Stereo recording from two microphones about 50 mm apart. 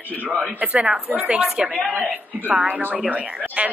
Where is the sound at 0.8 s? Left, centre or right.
Centre.